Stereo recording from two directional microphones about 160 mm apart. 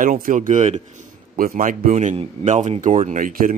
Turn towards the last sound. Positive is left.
turn(degrees=-60)  # may be behind; listen again after turning